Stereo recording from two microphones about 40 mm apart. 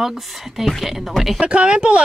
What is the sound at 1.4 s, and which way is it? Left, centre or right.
Speech, right.